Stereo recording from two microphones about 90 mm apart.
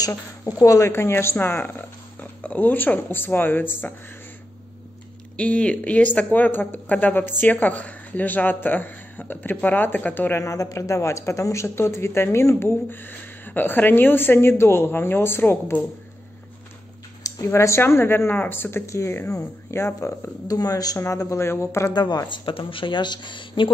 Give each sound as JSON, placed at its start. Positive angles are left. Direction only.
{"t": 0.6, "sound": "speech", "side_deg": 35}
{"t": 5.4, "sound": "speech", "side_deg": 15}
{"t": 10.4, "sound": "speech", "side_deg": 35}
{"t": 17.5, "sound": "speech", "side_deg": 30}
{"t": 20.4, "sound": "speech", "side_deg": 45}
{"t": 21.9, "sound": "speech", "side_deg": 50}